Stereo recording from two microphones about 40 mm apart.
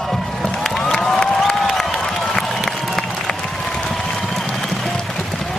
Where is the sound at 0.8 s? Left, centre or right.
Centre.